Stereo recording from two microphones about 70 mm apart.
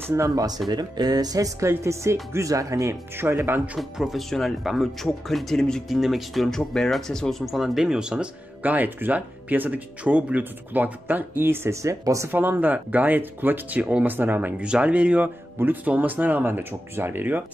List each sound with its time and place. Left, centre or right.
0.1 s speech: right
0.7 s speech: right
1.6 s speech: right
2.3 s speech: right
3.3 s speech: right
3.6 s speech: centre
4.3 s speech: centre
8.6 s speech: right
12.3 s speech: right
14.6 s speech: centre